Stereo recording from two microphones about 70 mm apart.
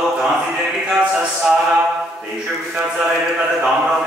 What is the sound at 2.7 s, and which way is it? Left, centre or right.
Speech, centre.